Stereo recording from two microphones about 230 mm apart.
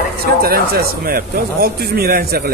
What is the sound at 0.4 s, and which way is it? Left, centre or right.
Speech, right.